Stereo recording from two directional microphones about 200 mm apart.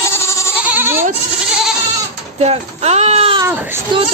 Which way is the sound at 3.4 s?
10° right (ahead or behind).